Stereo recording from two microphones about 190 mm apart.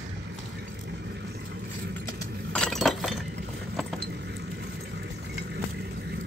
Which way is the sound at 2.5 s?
5° left (ahead or behind).